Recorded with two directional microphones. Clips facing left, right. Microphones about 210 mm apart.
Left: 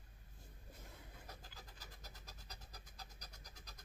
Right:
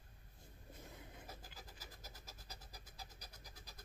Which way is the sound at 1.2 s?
10° right (ahead or behind).